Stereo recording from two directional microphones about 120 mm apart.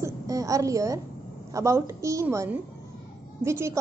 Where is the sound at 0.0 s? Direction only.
30° right (ahead or behind).